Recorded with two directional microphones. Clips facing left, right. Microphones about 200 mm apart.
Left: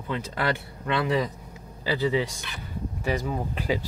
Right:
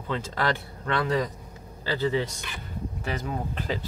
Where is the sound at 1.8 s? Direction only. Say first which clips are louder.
Left 1 dB; 15° left (ahead or behind).